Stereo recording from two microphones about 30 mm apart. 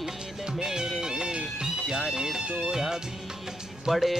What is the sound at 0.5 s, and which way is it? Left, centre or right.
Music, right.